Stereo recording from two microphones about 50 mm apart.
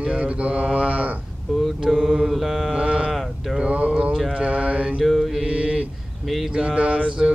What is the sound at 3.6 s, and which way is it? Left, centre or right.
Speech, right.